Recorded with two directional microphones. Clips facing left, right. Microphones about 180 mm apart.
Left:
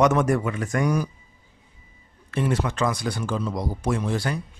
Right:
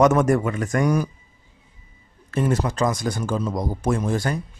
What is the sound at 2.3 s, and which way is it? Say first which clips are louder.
Speech: right 2 dB; 45° right (ahead or behind).